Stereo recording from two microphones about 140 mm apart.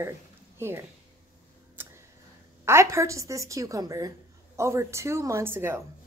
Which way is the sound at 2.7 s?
20° right (ahead or behind).